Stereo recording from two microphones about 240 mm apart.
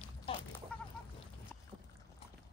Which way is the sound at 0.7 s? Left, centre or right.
Centre.